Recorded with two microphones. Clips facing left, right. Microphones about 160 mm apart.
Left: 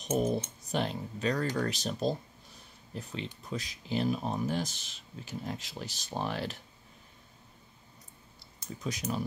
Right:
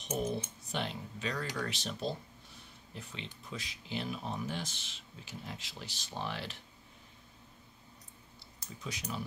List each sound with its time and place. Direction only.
0.1 s speech: 40° left (ahead or behind)
8.8 s speech: 45° left (ahead or behind)